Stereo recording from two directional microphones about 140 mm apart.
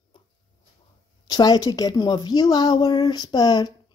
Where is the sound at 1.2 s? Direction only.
30° left (ahead or behind).